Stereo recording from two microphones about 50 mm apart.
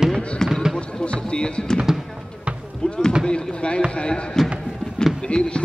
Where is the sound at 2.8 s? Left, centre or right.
Centre.